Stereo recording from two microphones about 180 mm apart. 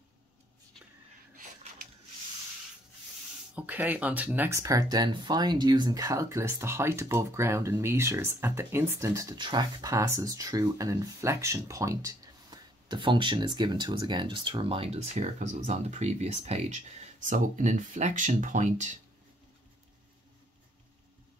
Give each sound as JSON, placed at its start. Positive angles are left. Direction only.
{"t": 3.5, "sound": "speech", "side_deg": -10}